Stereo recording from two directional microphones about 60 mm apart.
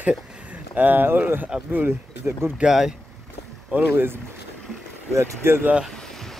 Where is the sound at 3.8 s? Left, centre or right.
Right.